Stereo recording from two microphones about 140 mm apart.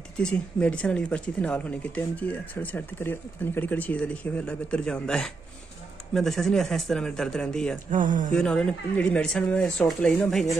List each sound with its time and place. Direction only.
0.2 s a man's voice: 5° left (ahead or behind)
7.9 s speech: 70° right (ahead or behind)
8.3 s speech: 5° left (ahead or behind)